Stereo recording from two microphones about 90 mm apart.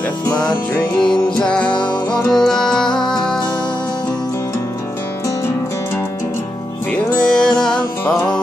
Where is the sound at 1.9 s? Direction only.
45° left (ahead or behind).